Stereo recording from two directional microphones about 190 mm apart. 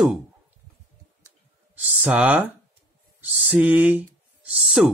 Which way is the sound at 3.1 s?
5° right (ahead or behind).